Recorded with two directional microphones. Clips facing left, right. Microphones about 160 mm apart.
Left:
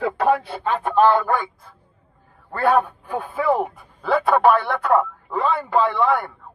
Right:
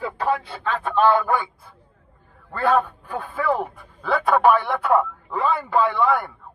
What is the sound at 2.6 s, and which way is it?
A man's voice, 10° left (ahead or behind).